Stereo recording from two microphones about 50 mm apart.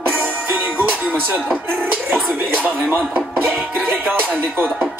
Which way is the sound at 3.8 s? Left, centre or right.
Right.